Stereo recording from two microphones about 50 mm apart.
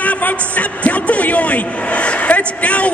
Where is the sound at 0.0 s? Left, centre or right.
Left.